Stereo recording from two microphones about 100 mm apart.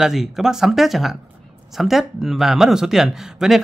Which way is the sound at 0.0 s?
5° right (ahead or behind).